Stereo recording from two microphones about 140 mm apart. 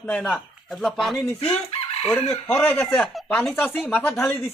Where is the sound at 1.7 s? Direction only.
45° left (ahead or behind).